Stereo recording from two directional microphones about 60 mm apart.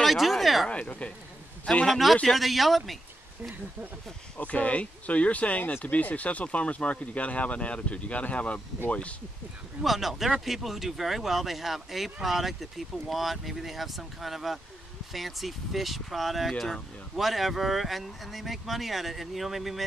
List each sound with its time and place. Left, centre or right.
0.0 s a sound: centre
0.7 s speech: left
1.9 s speech: centre
4.4 s speech: left
9.8 s speech: centre